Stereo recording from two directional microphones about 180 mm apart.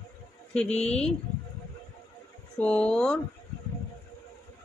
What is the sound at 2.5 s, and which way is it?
Speech, 5° left (ahead or behind).